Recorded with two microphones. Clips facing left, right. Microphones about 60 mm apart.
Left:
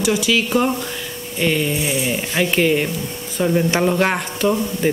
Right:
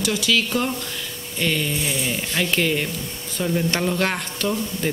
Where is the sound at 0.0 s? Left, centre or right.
Centre.